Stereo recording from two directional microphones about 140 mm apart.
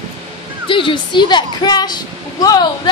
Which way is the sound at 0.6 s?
35° left (ahead or behind).